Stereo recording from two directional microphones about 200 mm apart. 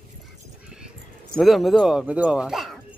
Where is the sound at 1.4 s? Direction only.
Centre (ahead or behind).